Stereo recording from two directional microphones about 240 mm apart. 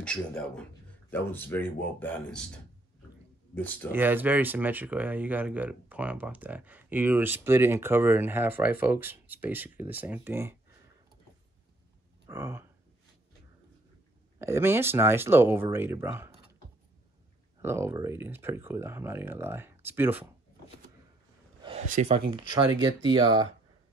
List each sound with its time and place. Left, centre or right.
0.0 s speech: centre
3.5 s speech: centre
3.9 s speech: centre
12.3 s speech: centre
14.4 s speech: centre
17.6 s speech: centre
21.6 s speech: right